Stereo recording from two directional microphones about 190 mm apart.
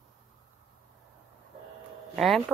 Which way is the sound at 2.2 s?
Centre (ahead or behind).